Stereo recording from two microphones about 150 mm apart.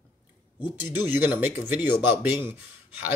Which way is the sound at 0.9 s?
10° right (ahead or behind).